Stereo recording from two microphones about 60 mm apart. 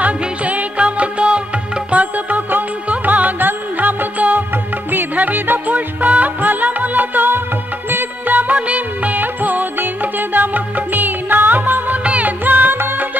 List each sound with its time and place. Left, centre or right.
0.0 s music: right